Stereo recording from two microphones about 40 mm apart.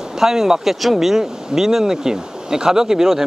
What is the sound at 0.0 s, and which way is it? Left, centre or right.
Speech, centre.